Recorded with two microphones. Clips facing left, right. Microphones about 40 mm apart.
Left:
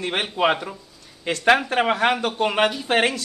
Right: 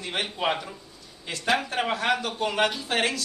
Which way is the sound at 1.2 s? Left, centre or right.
Left.